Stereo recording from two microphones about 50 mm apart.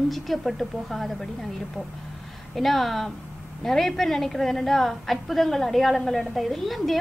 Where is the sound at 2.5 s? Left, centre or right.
Centre.